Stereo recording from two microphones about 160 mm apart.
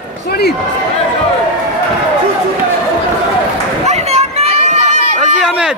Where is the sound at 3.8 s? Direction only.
40° right (ahead or behind).